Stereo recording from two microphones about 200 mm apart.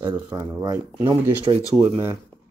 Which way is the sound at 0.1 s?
10° right (ahead or behind).